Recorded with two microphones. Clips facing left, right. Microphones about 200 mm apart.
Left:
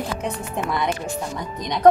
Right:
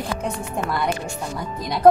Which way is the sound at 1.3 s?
5° right (ahead or behind).